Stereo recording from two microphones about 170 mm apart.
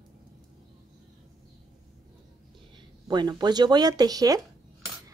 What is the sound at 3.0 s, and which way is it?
Speech, 25° right (ahead or behind).